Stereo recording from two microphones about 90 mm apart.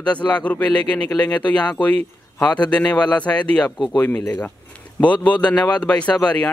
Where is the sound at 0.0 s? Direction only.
15° left (ahead or behind).